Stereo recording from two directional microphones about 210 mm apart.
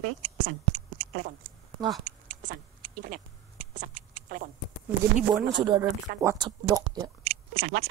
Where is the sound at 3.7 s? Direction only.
40° right (ahead or behind).